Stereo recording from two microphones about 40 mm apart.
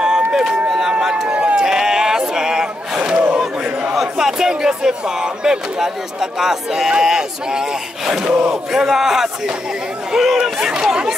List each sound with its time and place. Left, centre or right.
0.0 s a sound: centre
1.0 s speech: centre
1.3 s speech: right
1.6 s a sound: centre
3.9 s speech: centre
10.4 s speech: centre